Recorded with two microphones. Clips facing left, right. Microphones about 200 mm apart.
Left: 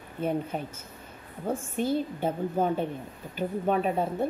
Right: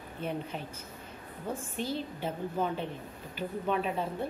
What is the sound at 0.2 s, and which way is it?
A woman's voice, 45° left (ahead or behind).